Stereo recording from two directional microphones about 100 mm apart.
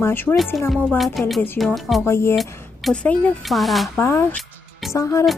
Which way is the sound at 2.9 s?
10° left (ahead or behind).